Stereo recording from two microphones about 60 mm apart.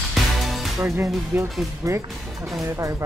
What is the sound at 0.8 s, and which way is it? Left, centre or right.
Speech, right.